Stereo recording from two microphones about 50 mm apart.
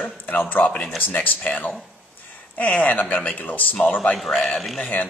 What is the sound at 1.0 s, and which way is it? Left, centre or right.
Speech, left.